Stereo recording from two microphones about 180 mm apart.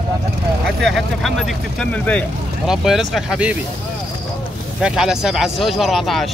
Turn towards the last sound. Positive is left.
turn(degrees=0)  # may be behind; listen again after turning